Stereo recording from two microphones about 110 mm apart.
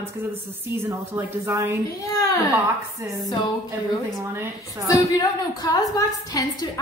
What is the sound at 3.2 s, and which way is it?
Speech, 40° left (ahead or behind).